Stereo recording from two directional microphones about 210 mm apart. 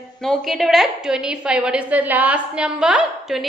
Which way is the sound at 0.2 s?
Centre (ahead or behind).